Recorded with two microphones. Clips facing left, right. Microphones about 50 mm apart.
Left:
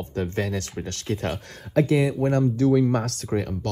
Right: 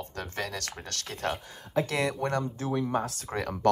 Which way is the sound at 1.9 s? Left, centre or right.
Centre.